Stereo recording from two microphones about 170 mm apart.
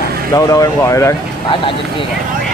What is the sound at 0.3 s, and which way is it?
Speech, 20° left (ahead or behind).